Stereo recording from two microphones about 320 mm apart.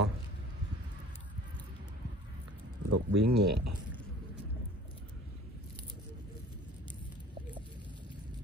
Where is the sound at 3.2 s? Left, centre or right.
Right.